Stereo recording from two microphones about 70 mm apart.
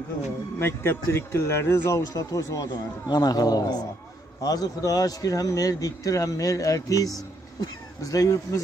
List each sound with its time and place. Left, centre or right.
0.6 s speech: left